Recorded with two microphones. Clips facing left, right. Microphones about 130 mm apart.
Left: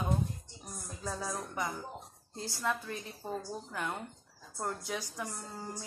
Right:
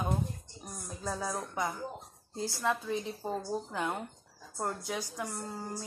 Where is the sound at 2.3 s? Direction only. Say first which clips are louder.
Right 3 dB; 15° right (ahead or behind).